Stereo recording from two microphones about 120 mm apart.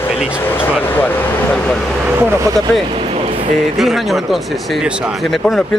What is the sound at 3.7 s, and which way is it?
Speech, centre (ahead or behind).